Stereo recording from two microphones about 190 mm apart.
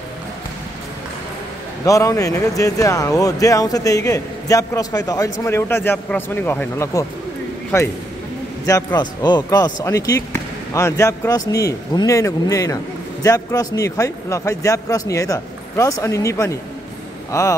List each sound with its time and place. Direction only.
1.9 s speech: 15° left (ahead or behind)
8.6 s speech: 15° left (ahead or behind)